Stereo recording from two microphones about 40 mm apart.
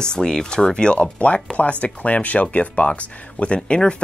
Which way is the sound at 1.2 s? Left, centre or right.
Left.